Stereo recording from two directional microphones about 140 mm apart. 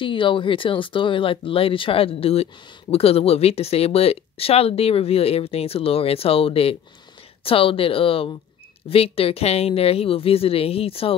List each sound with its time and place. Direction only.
0.0 s speech: 35° left (ahead or behind)